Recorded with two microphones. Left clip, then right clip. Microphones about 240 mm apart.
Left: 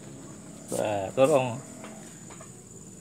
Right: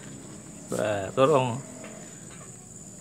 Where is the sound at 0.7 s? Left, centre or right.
Centre.